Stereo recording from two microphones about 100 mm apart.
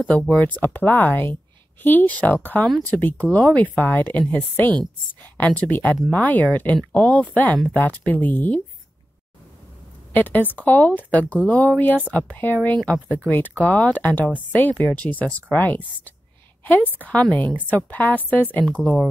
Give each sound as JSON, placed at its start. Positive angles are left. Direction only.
{"t": 0.1, "sound": "speech", "side_deg": 15}
{"t": 10.1, "sound": "speech", "side_deg": 20}